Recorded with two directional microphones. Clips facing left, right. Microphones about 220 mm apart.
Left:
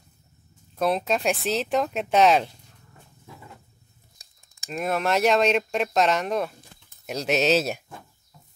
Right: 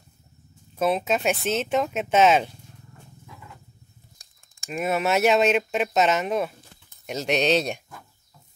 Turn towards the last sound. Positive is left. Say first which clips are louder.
# even
turn(degrees=5)  # may be behind; listen again after turning